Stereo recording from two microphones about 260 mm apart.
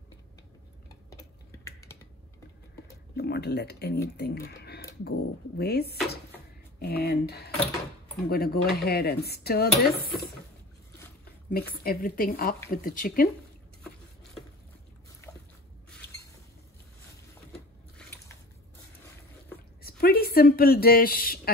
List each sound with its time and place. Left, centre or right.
1.1 s typing: centre
3.2 s speech: left
11.5 s speech: left
17.9 s a sound: centre
19.8 s speech: left